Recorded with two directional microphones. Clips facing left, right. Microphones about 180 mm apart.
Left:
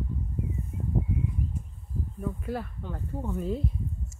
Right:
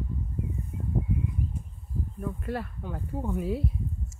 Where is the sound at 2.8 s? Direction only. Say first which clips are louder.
Right 1 dB; 10° right (ahead or behind).